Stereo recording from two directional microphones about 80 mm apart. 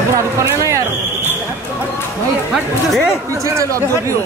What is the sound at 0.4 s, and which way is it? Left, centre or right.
Speech, right.